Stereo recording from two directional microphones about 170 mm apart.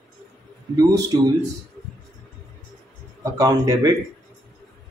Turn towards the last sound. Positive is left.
turn(degrees=-20)  # may be behind; listen again after turning